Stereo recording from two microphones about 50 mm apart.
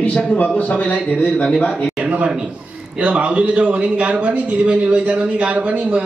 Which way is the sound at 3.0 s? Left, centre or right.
Right.